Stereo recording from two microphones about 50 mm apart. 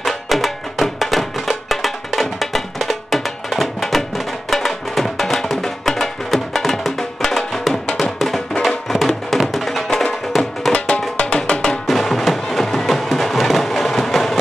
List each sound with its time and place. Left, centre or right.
0.0 s music: centre
10.7 s music: left
11.9 s music: centre